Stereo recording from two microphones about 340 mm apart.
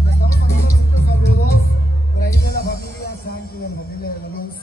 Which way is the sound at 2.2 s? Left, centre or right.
Left.